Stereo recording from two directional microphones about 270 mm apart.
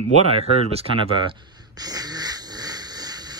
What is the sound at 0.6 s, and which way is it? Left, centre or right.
Speech, right.